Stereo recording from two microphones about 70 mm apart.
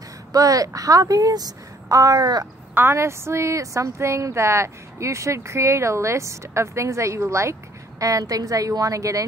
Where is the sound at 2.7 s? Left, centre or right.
Right.